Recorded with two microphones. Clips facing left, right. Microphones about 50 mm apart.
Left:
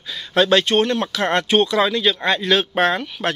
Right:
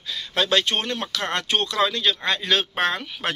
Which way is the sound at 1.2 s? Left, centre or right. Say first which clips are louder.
Left 8 dB; centre.